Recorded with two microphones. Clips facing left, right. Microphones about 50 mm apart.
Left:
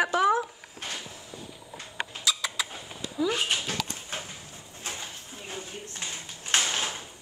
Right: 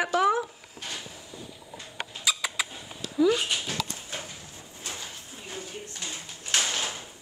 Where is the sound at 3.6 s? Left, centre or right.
Left.